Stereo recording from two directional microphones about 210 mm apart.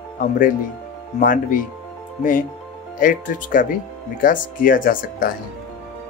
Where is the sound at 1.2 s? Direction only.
40° left (ahead or behind).